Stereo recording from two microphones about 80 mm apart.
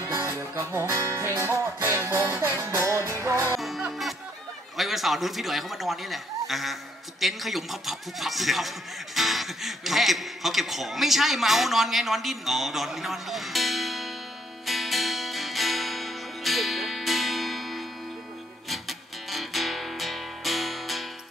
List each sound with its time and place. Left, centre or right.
0.1 s music: right
3.5 s music: centre
4.7 s a man's voice: centre
14.7 s music: centre